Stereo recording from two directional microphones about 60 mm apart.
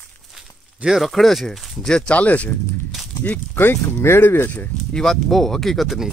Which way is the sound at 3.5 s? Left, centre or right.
Left.